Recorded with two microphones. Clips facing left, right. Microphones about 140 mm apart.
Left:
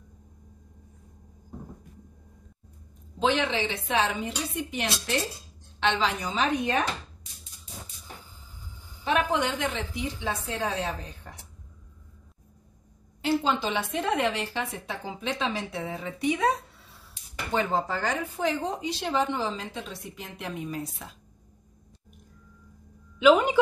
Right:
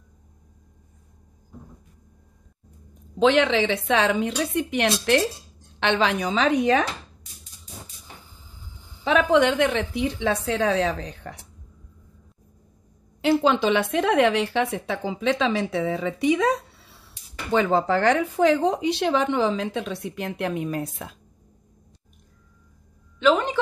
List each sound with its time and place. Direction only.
3.2 s speech: 90° right
9.0 s speech: 90° right
13.2 s speech: 80° right
17.6 s speech: 90° right; by 21.2 s 60° right (ahead or behind)
23.1 s a woman's voice: 10° left (ahead or behind)